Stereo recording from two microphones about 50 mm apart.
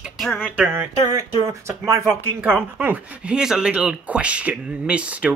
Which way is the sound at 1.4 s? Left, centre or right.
Right.